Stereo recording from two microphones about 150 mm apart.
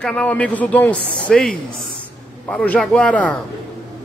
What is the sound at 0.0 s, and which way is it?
Speech, 5° left (ahead or behind).